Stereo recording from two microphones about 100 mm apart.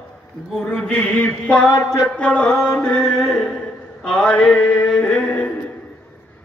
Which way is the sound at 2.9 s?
5° left (ahead or behind).